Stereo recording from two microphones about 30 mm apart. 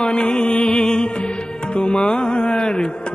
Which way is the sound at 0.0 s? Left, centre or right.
Left.